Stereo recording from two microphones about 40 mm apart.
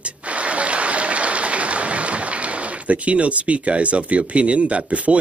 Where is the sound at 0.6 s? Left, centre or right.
Right.